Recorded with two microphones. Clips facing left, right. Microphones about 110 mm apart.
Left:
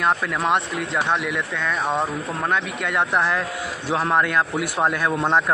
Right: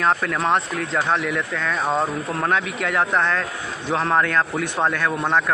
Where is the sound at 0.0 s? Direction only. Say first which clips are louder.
Right 1 dB; 5° left (ahead or behind).